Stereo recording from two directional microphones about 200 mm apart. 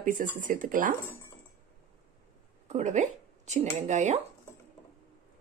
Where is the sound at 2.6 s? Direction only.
35° right (ahead or behind).